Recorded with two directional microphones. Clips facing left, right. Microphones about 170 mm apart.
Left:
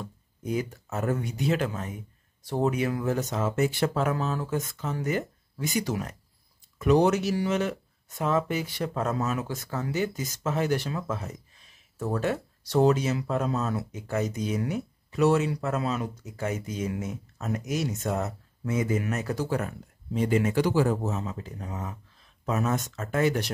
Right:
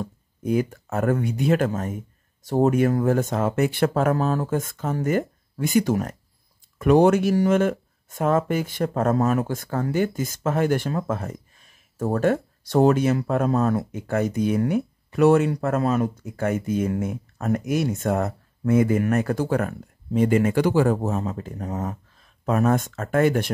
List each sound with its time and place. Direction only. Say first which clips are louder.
0.0 s speech: right 7 dB; 55° right (ahead or behind)